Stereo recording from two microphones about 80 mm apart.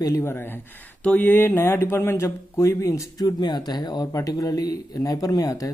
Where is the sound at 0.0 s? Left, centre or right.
Left.